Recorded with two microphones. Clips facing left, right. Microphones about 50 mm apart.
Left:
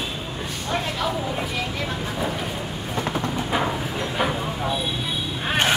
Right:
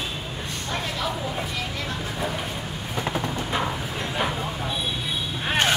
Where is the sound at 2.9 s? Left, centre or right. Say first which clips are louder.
Left 2 dB; centre.